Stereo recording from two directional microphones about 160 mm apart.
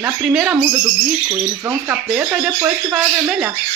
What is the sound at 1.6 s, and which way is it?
Speech, 10° right (ahead or behind).